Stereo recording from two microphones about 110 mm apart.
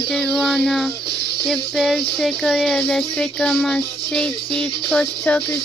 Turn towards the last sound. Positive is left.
turn(degrees=10)  # may be behind; listen again after turning